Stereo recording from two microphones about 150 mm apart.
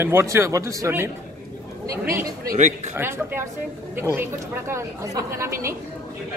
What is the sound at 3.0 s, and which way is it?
Speech, 15° right (ahead or behind).